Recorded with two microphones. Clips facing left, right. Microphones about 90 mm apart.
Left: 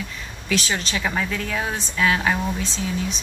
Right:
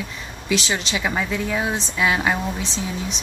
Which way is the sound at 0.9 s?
10° right (ahead or behind).